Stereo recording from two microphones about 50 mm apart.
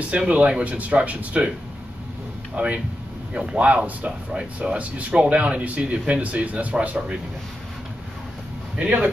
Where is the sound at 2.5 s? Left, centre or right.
Right.